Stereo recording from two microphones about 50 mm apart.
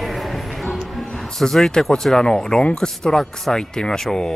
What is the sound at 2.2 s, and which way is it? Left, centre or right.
Speech, centre.